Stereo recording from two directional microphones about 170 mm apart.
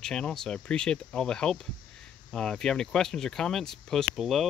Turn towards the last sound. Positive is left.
turn(degrees=0)  # may be behind; listen again after turning